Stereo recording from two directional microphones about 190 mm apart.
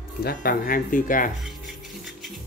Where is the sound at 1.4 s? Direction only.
Centre (ahead or behind).